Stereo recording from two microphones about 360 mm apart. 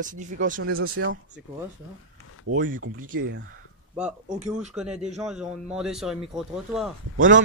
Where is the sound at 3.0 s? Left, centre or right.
Right.